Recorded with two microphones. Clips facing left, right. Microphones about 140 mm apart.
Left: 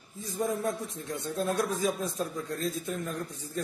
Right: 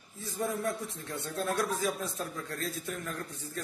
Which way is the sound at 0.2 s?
20° left (ahead or behind).